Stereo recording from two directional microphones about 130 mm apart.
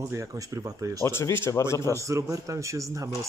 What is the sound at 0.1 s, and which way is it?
Speech, 25° right (ahead or behind).